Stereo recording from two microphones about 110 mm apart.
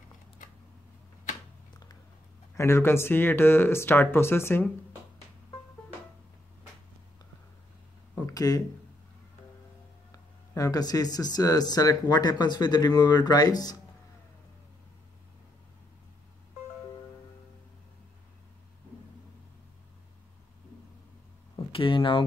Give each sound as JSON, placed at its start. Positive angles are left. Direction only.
{"t": 2.5, "sound": "speech", "side_deg": 25}
{"t": 8.3, "sound": "speech", "side_deg": 35}
{"t": 10.1, "sound": "speech", "side_deg": 30}
{"t": 21.7, "sound": "a sound", "side_deg": 50}